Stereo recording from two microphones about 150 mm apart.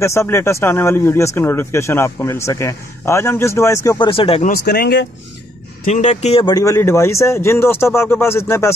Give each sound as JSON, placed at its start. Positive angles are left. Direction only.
{"t": 0.0, "sound": "speech", "side_deg": 20}
{"t": 4.1, "sound": "speech", "side_deg": 35}
{"t": 4.4, "sound": "speech", "side_deg": 75}
{"t": 5.9, "sound": "speech", "side_deg": 50}
{"t": 6.4, "sound": "speech", "side_deg": 25}